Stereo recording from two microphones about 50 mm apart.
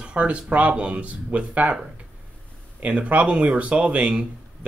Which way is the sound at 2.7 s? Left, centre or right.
Right.